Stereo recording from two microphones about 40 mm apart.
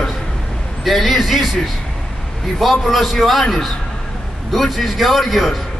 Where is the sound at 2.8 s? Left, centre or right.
Centre.